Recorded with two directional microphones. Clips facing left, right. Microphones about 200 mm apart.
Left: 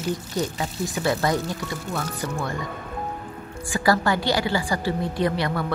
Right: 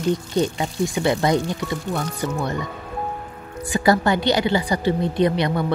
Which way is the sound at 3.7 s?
20° right (ahead or behind).